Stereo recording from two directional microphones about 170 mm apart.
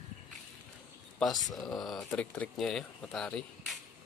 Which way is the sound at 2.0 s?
10° left (ahead or behind).